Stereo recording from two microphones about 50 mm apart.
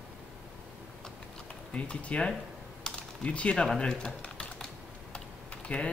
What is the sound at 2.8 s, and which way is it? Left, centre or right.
Typing, centre.